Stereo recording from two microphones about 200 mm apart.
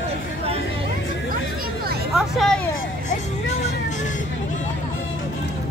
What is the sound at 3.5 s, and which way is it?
Music, 35° left (ahead or behind).